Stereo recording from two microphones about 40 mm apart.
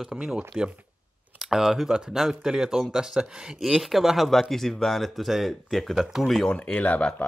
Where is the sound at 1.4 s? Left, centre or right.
Centre.